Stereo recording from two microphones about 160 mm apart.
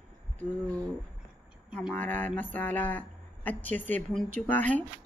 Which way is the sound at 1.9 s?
10° left (ahead or behind).